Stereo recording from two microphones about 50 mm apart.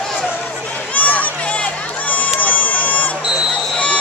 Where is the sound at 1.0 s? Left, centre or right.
Left.